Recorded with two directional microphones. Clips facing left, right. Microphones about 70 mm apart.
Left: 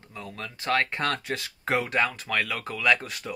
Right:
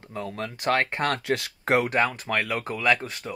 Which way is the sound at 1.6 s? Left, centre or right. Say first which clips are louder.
Right 3 dB; right.